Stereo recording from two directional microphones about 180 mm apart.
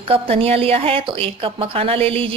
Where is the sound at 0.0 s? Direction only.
30° right (ahead or behind).